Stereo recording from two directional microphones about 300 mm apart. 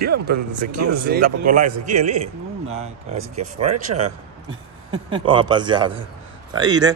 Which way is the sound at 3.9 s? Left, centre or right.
Right.